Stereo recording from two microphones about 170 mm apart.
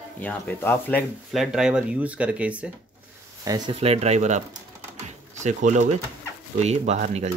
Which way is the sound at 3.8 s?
40° right (ahead or behind).